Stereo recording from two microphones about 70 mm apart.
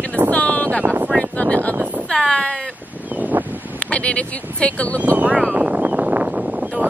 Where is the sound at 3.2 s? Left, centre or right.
Right.